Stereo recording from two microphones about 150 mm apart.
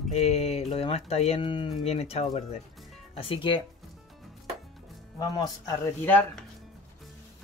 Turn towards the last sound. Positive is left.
turn(degrees=10)  # may be behind; listen again after turning